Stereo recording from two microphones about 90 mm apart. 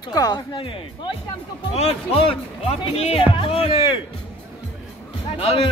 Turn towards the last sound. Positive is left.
turn(degrees=90)